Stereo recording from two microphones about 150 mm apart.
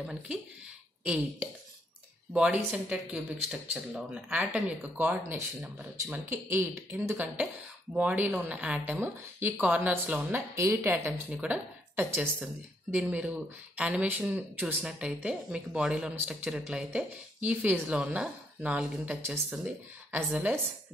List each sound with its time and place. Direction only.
0.0 s speech: 5° right (ahead or behind); by 11.1 s 20° right (ahead or behind)
11.2 s speech: 10° right (ahead or behind)